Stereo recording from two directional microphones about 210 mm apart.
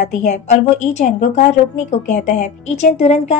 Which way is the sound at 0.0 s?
35° left (ahead or behind).